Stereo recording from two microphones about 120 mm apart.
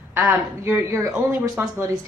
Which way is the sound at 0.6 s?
25° right (ahead or behind).